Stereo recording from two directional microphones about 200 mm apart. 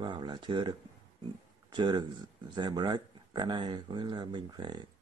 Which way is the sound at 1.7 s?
25° right (ahead or behind).